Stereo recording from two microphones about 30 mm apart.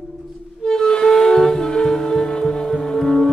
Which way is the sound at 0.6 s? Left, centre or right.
Left.